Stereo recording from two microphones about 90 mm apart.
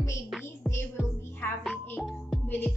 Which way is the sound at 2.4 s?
20° left (ahead or behind).